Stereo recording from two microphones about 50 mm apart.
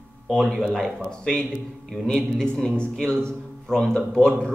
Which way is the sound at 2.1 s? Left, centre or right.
Centre.